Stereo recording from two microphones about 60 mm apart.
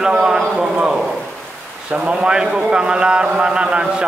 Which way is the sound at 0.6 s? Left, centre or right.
Centre.